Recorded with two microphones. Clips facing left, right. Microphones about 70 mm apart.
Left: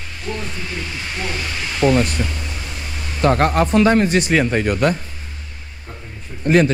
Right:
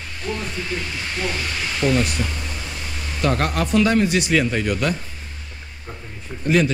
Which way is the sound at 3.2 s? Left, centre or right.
Left.